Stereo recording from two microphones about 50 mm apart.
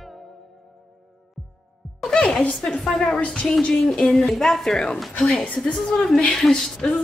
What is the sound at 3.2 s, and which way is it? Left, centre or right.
Speech, left.